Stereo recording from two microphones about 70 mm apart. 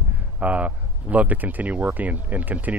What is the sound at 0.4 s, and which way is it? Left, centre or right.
Speech, centre.